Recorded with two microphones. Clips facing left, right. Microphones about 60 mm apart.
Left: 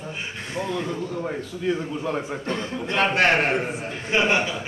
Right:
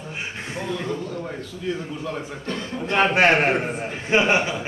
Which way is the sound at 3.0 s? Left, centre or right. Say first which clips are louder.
Right 2 dB; centre.